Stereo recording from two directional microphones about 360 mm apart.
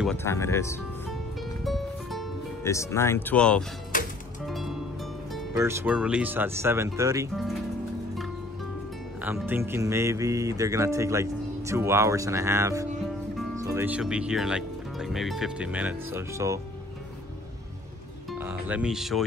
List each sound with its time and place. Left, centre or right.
0.0 s speech: centre
1.6 s music: centre
3.9 s music: left
4.5 s music: centre
5.3 s speech: centre
9.2 s speech: centre
18.4 s speech: centre